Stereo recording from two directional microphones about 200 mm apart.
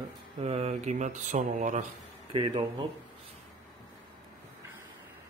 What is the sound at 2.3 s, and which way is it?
Speech, 25° right (ahead or behind).